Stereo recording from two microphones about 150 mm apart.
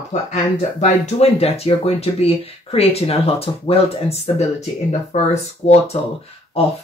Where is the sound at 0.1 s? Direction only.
45° left (ahead or behind).